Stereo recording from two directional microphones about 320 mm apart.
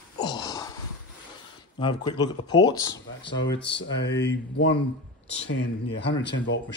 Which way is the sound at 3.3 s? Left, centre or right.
Left.